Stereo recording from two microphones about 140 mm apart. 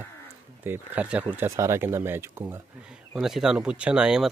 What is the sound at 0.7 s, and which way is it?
Speech, 10° right (ahead or behind).